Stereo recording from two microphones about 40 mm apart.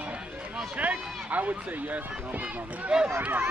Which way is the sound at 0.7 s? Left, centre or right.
Right.